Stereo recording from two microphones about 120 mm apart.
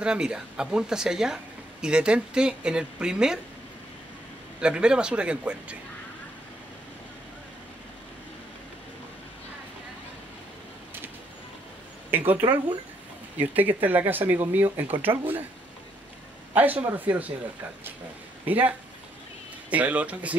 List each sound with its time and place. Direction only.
0.0 s speech: 5° right (ahead or behind)
4.6 s speech: 10° right (ahead or behind)
12.1 s speech: 15° right (ahead or behind)
16.5 s speech: 15° right (ahead or behind)
18.4 s speech: 15° right (ahead or behind)